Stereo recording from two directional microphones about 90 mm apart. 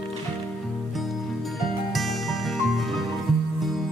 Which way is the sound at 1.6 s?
Centre (ahead or behind).